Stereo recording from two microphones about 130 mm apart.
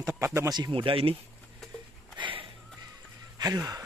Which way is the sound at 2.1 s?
40° right (ahead or behind).